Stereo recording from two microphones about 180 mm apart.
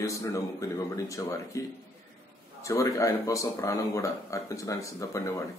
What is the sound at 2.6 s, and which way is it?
A man's voice, 20° left (ahead or behind).